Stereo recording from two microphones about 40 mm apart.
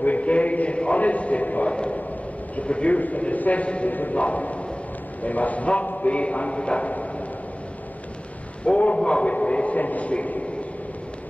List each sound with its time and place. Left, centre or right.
0.0 s a sound: left
1.7 s a man's voice: left
3.9 s a man's voice: left
8.6 s a man's voice: left